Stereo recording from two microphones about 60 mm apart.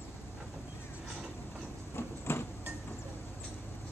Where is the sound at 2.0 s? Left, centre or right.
Left.